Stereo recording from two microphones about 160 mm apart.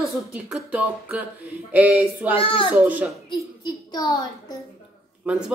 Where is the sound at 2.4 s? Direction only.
35° left (ahead or behind).